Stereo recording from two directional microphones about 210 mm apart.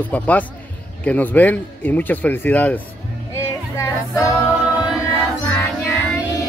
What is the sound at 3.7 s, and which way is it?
Music, 15° left (ahead or behind).